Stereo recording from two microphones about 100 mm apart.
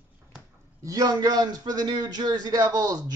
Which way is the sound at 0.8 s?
35° right (ahead or behind).